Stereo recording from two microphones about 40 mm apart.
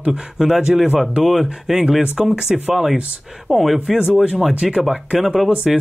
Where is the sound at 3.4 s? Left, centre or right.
Centre.